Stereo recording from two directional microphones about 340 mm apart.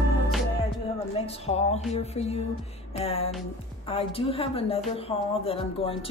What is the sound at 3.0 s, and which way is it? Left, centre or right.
Speech, centre.